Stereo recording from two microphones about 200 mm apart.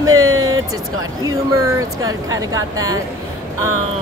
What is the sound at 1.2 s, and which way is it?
A woman's voice, 15° right (ahead or behind).